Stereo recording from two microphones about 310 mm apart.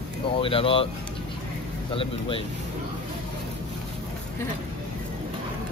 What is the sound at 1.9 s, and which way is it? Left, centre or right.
Speech, centre.